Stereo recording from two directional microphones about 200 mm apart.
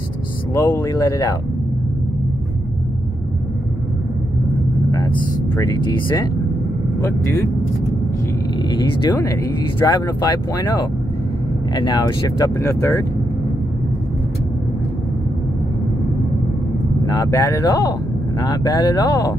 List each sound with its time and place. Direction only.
0.7 s speech: 15° left (ahead or behind)
5.6 s speech: 15° left (ahead or behind)
8.6 s speech: 20° left (ahead or behind)
17.0 s speech: 20° left (ahead or behind)